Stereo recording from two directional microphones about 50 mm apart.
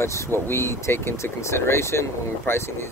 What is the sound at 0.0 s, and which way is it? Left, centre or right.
Speech, left.